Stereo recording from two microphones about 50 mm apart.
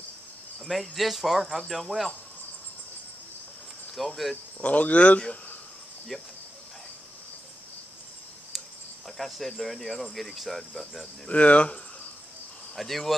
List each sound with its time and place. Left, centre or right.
0.7 s speech: centre
4.0 s speech: centre
4.6 s speech: left
8.5 s cricket: centre
9.6 s speech: centre
11.2 s speech: left
12.7 s speech: centre